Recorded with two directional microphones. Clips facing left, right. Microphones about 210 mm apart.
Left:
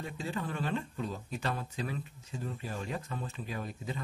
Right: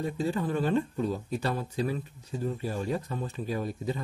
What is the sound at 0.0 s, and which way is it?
Speech, 35° right (ahead or behind).